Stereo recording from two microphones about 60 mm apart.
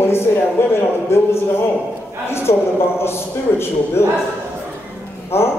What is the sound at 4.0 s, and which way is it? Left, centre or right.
Speech, left.